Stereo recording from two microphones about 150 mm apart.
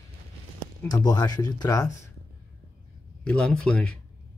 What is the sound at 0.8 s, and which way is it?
Speech, 25° left (ahead or behind).